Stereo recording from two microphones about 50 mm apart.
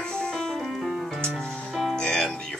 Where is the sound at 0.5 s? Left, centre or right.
Centre.